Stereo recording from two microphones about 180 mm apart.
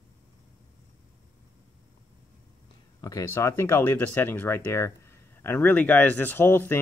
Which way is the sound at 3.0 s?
20° left (ahead or behind).